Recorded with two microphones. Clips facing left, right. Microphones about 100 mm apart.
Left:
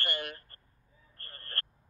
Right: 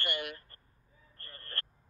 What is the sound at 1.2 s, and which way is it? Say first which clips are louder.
Vehicle: left 2 dB; 45° left (ahead or behind).